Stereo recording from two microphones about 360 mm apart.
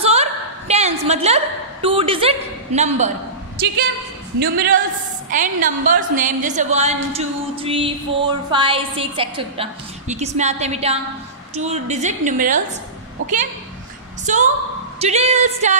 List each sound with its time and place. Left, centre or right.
0.0 s a sound: centre
4.4 s a woman's voice: right
13.2 s a woman's voice: right
14.2 s a woman's voice: centre